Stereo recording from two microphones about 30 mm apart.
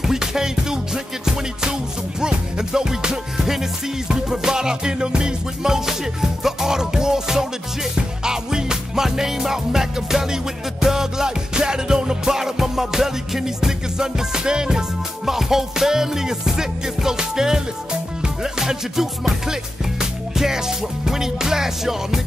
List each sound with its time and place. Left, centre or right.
0.0 s music: centre